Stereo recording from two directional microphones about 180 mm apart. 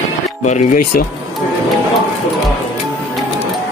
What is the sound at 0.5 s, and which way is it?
Speech, 40° left (ahead or behind).